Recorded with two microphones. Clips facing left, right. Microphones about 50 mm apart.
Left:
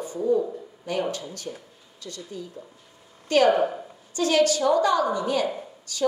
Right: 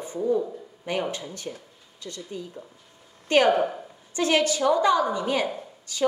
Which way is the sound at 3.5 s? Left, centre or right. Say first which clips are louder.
Left 1 dB; centre.